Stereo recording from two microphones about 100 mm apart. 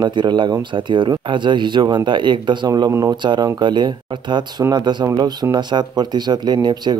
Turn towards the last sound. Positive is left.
turn(degrees=-50)  # may be behind; listen again after turning